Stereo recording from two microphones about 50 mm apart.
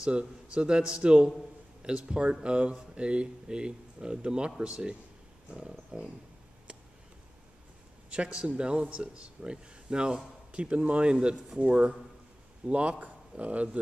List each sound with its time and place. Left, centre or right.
0.0 s speech: right
8.1 s speech: centre